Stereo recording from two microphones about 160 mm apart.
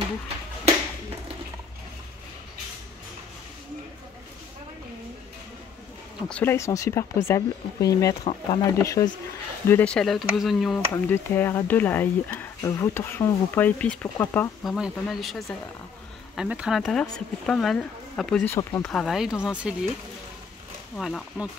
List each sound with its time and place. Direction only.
6.2 s speech: 5° left (ahead or behind)
6.5 s speech: 20° left (ahead or behind)
8.2 s speech: 35° left (ahead or behind)
9.7 s speech: 10° left (ahead or behind)
10.9 s speech: 15° left (ahead or behind)
14.6 s speech: centre (ahead or behind)
18.5 s speech: 20° left (ahead or behind)
18.9 s speech: centre (ahead or behind)
20.9 s speech: 5° left (ahead or behind)